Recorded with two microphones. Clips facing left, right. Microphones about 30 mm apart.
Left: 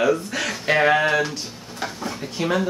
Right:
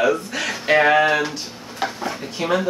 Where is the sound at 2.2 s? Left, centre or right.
Centre.